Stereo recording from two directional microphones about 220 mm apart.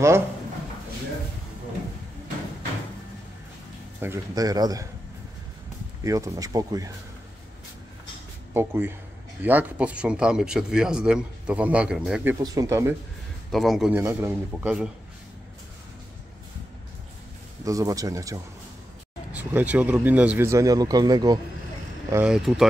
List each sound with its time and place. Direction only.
4.0 s a man's voice: 15° right (ahead or behind)
6.0 s a man's voice: 15° right (ahead or behind)
8.5 s a man's voice: 10° right (ahead or behind)
12.4 s a man's voice: 15° right (ahead or behind)
13.5 s speech: centre (ahead or behind)
17.6 s a man's voice: 15° right (ahead or behind)
22.1 s speech: 5° right (ahead or behind)